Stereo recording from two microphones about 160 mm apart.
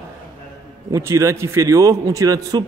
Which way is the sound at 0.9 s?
20° right (ahead or behind).